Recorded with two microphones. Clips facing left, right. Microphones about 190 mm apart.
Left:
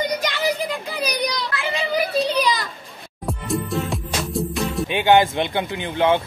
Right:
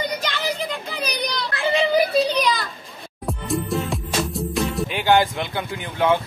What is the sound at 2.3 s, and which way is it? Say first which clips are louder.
Children playing: left 1 dB; 10° left (ahead or behind).